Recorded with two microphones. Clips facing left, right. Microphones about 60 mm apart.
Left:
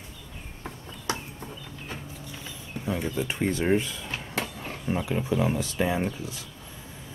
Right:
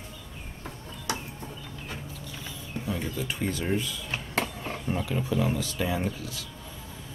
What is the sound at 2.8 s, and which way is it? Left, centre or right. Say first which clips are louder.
Speech: left 3 dB; left.